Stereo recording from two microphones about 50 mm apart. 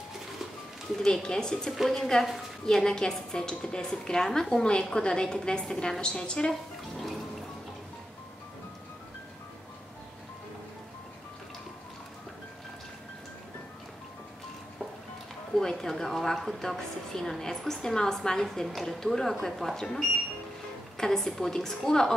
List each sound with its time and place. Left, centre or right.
0.9 s a woman's voice: centre
1.7 s a woman's voice: centre
15.5 s a woman's voice: centre